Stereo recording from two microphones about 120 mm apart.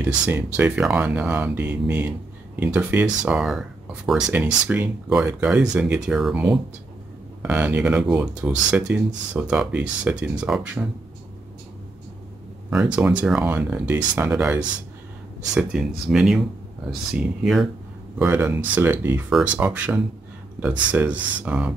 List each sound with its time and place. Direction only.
0.6 s speech: 15° right (ahead or behind)
3.2 s speech: 5° right (ahead or behind)
4.7 s speech: 15° right (ahead or behind)
12.7 s speech: 10° right (ahead or behind)
15.5 s speech: 5° right (ahead or behind)
18.2 s speech: 20° right (ahead or behind)